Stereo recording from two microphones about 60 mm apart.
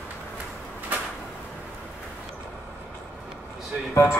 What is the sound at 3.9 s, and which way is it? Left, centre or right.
Speech, left.